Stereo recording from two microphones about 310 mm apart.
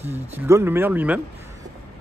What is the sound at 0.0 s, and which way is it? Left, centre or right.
Speech, right.